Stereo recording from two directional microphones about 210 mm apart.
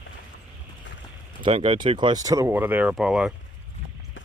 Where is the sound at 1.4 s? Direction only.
25° right (ahead or behind); by 3.3 s 5° right (ahead or behind).